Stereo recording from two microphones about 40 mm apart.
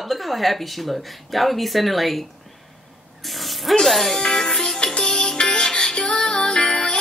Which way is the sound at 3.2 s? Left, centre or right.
Centre.